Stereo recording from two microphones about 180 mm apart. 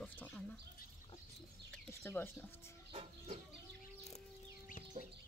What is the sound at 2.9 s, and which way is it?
Chicken, 35° right (ahead or behind).